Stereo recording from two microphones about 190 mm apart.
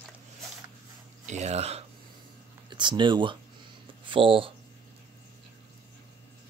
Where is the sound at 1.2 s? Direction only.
35° right (ahead or behind).